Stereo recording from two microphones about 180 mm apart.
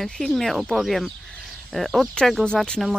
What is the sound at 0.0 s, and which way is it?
Speech, centre (ahead or behind).